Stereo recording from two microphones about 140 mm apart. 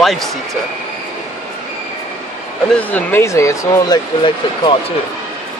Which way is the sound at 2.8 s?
10° left (ahead or behind).